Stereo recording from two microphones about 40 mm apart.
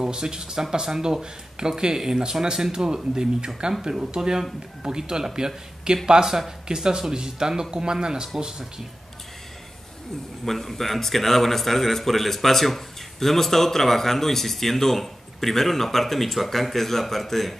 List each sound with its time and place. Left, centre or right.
0.0 s speech: centre
10.4 s speech: centre